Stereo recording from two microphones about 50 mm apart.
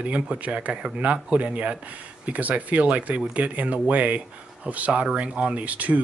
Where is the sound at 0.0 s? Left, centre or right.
Right.